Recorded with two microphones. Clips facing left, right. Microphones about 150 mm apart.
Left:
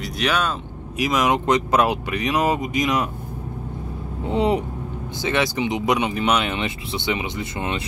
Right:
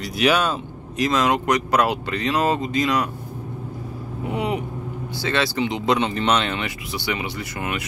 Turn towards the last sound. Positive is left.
turn(degrees=25)  # may be behind; listen again after turning